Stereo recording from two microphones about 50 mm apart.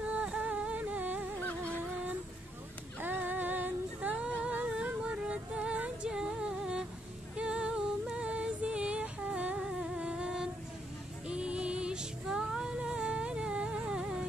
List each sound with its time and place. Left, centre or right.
0.0 s music: right
3.0 s music: right; by 6.9 s centre
7.3 s a sound: centre
9.7 s humming: centre
11.2 s music: right